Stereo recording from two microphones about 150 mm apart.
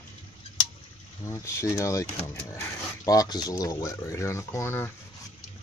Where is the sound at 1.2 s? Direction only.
20° left (ahead or behind).